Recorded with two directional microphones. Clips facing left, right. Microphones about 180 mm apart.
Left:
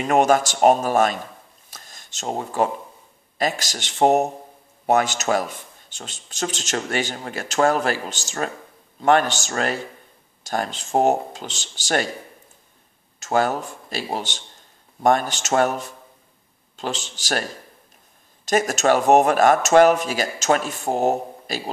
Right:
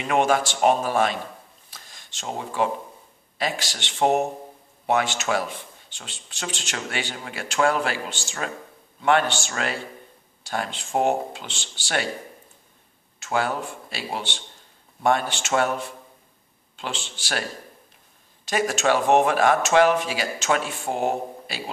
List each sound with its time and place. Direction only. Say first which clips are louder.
0.0 s speech: left 4 dB; 45° left (ahead or behind)
1.7 s a sound: left 2 dB; 45° left (ahead or behind)
3.3 s speech: left 4 dB; 45° left (ahead or behind)
13.2 s speech: left 4 dB; 40° left (ahead or behind)